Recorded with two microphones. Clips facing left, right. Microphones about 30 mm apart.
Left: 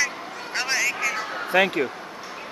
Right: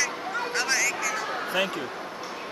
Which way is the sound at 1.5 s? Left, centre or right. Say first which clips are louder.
Left 9 dB; left.